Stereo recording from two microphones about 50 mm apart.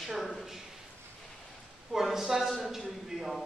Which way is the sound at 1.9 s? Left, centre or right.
Centre.